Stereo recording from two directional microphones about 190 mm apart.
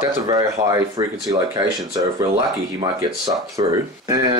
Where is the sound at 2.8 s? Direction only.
20° right (ahead or behind).